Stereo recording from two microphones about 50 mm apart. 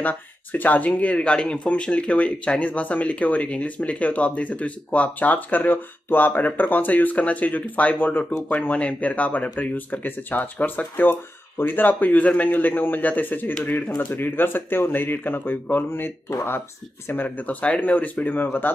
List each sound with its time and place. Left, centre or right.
0.0 s speech: left
5.7 s speech: left
17.1 s speech: left